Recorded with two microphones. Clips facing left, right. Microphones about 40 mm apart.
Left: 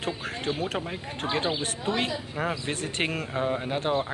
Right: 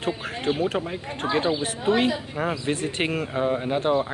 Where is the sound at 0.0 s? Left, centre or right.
Centre.